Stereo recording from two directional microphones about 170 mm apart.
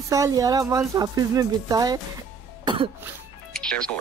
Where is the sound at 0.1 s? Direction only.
20° right (ahead or behind).